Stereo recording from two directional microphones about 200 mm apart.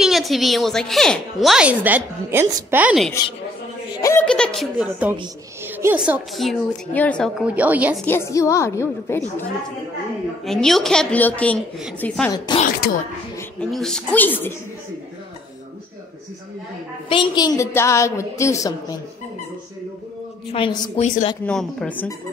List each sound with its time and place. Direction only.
0.0 s a woman's voice: centre (ahead or behind)
4.0 s a woman's voice: 10° left (ahead or behind)
5.6 s a woman's voice: 10° right (ahead or behind)
8.0 s a woman's voice: 10° left (ahead or behind)
10.4 s a woman's voice: centre (ahead or behind)
12.3 s a woman's voice: 20° left (ahead or behind)
13.4 s a woman's voice: 5° left (ahead or behind)
17.1 s a woman's voice: 25° left (ahead or behind)
20.5 s a woman's voice: 25° left (ahead or behind)
21.5 s a woman's voice: 5° left (ahead or behind)